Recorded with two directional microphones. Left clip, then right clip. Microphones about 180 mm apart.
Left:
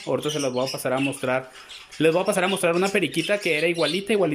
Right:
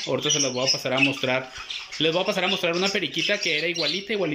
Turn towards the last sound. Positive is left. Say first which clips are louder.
# left 2 dB
turn(degrees=0)  # may be behind; listen again after turning